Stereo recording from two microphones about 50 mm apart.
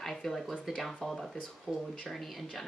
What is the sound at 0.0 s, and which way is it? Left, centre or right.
Speech, centre.